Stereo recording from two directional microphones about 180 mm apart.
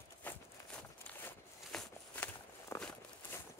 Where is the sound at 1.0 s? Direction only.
10° left (ahead or behind).